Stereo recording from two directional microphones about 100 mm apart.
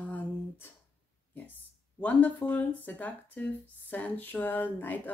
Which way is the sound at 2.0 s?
15° left (ahead or behind).